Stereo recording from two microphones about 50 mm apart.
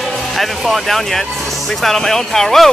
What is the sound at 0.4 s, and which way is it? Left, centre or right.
Speech, centre.